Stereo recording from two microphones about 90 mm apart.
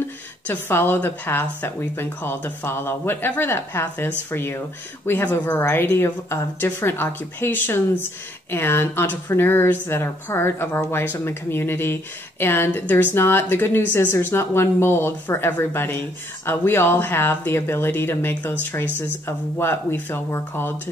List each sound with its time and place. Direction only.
0.5 s a woman's voice: 25° left (ahead or behind)